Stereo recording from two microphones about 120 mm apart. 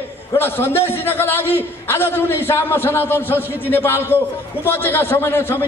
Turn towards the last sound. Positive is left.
turn(degrees=20)  # may be behind; listen again after turning